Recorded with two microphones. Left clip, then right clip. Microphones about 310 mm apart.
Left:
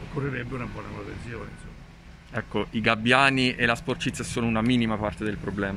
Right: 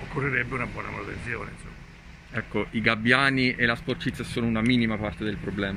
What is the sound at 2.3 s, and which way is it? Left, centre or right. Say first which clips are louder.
Speech: even; centre.